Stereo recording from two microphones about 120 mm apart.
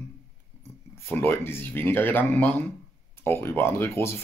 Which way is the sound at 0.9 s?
20° left (ahead or behind).